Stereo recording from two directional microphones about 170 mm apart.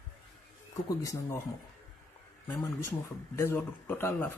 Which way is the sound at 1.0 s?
20° left (ahead or behind).